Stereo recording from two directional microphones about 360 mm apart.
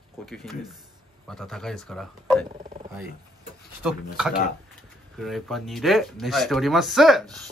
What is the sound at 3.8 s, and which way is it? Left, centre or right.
Speech, centre.